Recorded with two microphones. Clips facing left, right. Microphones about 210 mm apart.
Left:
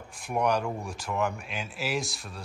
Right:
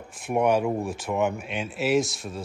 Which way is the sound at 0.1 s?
Centre (ahead or behind).